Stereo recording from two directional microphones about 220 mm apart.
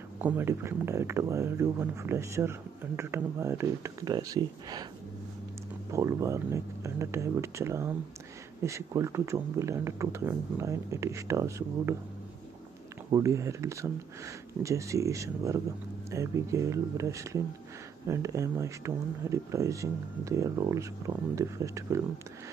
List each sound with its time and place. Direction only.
0.2 s speech: 10° right (ahead or behind)
5.9 s speech: 15° right (ahead or behind)
13.1 s speech: 15° right (ahead or behind)